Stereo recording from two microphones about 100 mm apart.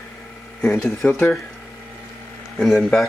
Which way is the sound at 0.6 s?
25° left (ahead or behind).